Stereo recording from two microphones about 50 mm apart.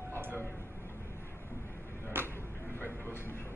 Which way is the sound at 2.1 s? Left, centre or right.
Right.